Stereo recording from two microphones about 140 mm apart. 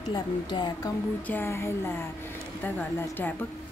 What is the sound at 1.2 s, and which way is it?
Speech, 15° left (ahead or behind).